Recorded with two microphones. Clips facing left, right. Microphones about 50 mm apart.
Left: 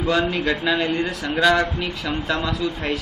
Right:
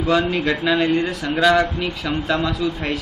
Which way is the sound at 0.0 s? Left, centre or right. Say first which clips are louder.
Right 2 dB; centre.